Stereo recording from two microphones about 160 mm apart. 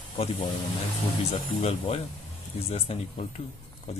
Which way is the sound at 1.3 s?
40° left (ahead or behind).